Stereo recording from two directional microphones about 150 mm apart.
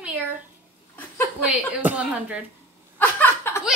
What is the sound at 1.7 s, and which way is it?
Speech, 10° right (ahead or behind).